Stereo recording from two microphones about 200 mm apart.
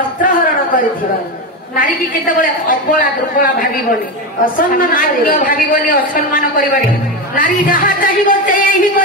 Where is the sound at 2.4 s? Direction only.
45° left (ahead or behind).